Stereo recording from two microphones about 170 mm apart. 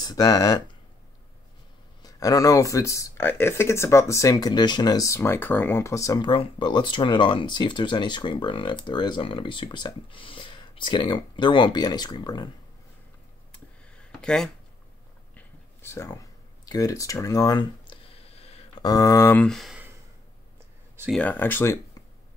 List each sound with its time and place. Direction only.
0.0 s speech: 20° left (ahead or behind)
2.0 s speech: 20° left (ahead or behind)
13.5 s a sound: 5° left (ahead or behind)
15.3 s a sound: 15° left (ahead or behind); by 18.7 s 35° left (ahead or behind)
18.8 s speech: 20° left (ahead or behind); by 19.8 s centre (ahead or behind)
21.1 s speech: 10° left (ahead or behind)